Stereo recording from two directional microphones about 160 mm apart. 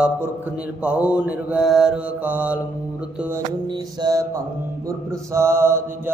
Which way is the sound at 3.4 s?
25° right (ahead or behind).